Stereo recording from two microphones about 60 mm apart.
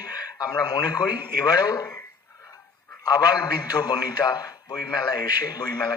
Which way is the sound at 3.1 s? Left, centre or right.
Left.